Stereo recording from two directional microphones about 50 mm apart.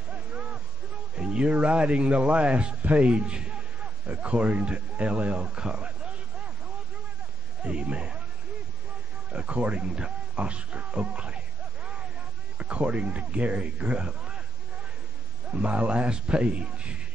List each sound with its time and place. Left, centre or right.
1.1 s speech: centre
7.6 s speech: right
9.3 s speech: right
15.5 s speech: right